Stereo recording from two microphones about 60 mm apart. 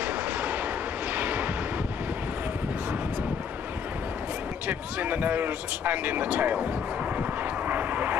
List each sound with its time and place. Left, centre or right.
0.0 s vehicle: right
4.6 s speech: right
7.2 s vehicle: right